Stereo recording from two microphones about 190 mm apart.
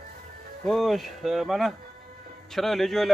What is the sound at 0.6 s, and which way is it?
Speech, centre (ahead or behind).